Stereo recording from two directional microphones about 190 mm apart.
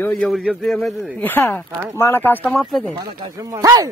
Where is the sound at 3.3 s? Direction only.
15° right (ahead or behind).